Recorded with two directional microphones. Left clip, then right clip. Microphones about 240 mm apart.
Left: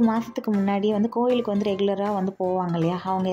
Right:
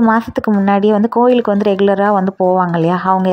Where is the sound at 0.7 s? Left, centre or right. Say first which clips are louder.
Right 12 dB; centre.